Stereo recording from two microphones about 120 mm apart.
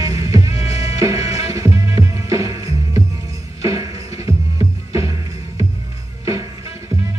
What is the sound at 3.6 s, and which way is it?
Music, 30° right (ahead or behind).